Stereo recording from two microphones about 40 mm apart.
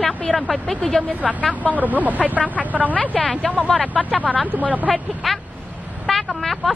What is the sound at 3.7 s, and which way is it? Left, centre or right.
Speech, centre.